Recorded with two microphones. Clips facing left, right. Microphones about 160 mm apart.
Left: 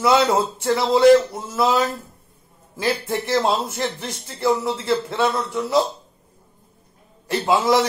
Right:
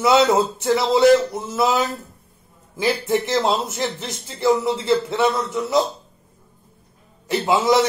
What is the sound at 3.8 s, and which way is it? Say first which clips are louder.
Speech: even; 10° right (ahead or behind).